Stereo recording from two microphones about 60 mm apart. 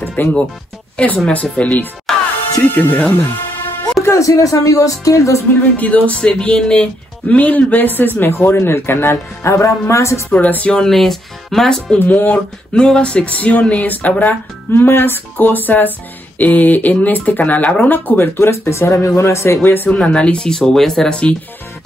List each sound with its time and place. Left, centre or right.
0.1 s speech: left
2.1 s music: centre
2.7 s speech: left
4.0 s speech: left
5.8 s speech: left
10.3 s speech: left
10.8 s speech: centre
12.0 s speech: left
12.7 s speech: centre
14.7 s speech: left
19.6 s speech: left
19.9 s speech: centre